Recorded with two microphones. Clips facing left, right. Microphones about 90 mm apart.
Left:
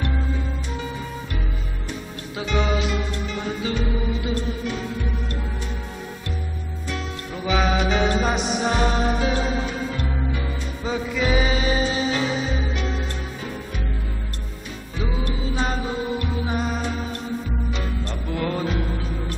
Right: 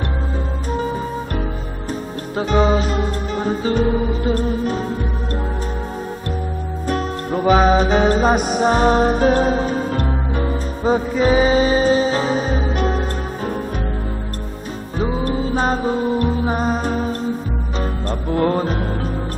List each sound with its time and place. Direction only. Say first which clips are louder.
0.7 s music: right 8 dB; 40° right (ahead or behind)
6.9 s music: right 10 dB; 45° right (ahead or behind)
15.0 s music: right 8 dB; 40° right (ahead or behind)